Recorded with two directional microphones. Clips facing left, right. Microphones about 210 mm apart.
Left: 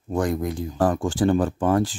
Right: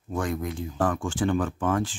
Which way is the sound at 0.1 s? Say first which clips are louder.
Left 5 dB; 35° left (ahead or behind).